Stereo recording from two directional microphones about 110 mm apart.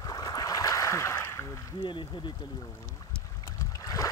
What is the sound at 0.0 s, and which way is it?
Boat, 35° left (ahead or behind).